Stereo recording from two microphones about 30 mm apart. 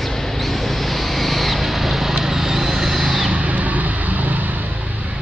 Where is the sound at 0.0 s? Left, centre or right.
Centre.